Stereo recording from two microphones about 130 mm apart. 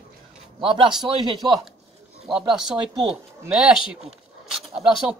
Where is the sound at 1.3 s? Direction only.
35° right (ahead or behind).